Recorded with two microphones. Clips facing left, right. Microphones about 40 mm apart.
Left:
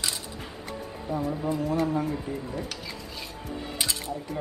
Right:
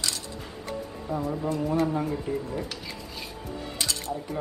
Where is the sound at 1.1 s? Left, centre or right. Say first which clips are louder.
Even; centre.